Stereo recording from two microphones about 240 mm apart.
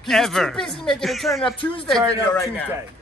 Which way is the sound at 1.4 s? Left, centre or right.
Left.